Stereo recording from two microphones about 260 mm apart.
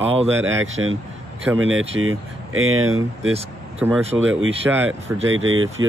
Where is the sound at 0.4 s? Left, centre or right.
Right.